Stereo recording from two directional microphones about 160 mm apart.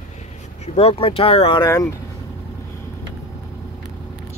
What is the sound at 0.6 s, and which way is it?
Speech, 40° left (ahead or behind).